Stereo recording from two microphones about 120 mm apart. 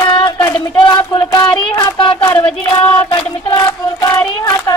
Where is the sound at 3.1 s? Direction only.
30° left (ahead or behind).